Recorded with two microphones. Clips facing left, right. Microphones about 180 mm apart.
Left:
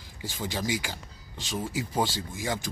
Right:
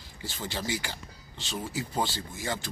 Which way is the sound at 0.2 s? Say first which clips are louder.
Left 3 dB; 15° left (ahead or behind).